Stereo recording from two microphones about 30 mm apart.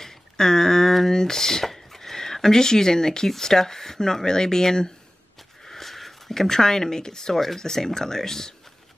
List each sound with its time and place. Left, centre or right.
0.0 s a sound: centre
1.1 s speech: centre
5.7 s speech: centre